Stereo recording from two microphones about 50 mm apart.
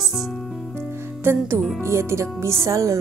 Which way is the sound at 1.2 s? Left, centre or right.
Right.